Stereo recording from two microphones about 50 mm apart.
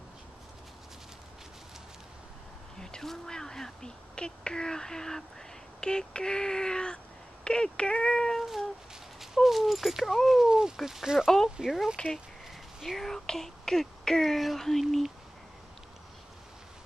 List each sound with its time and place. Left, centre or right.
2.8 s speech: centre
9.2 s speech: centre
12.0 s speech: left
12.8 s speech: centre